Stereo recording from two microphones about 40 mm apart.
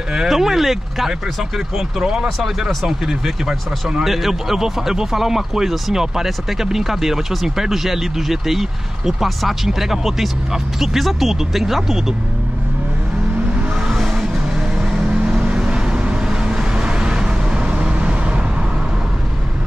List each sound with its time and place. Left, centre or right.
0.3 s speech: centre
13.8 s vehicle: centre
14.8 s vehicle: right